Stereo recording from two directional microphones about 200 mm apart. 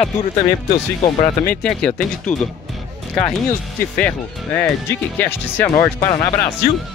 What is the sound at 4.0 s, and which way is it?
Speech, 5° left (ahead or behind).